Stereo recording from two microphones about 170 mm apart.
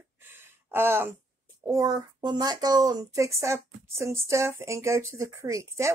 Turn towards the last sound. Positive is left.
turn(degrees=-20)  # may be behind; listen again after turning